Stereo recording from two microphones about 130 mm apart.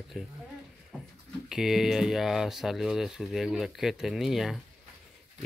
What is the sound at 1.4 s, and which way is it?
Speech, 5° right (ahead or behind).